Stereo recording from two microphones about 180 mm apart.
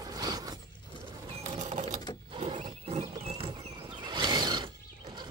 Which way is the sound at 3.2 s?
35° right (ahead or behind).